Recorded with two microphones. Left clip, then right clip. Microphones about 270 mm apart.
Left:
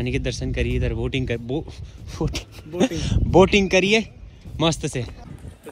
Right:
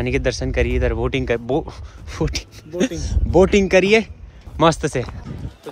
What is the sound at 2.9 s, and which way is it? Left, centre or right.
Speech, centre.